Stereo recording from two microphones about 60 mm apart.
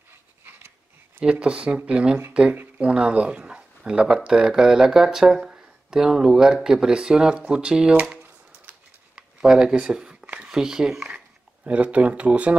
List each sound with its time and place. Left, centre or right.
1.2 s speech: centre
2.5 s speech: right
2.9 s speech: centre
7.9 s speech: right
9.1 s a sound: centre
10.5 s speech: centre
11.1 s speech: right